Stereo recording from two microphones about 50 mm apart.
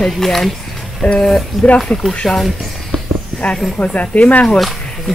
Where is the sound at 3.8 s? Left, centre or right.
Left.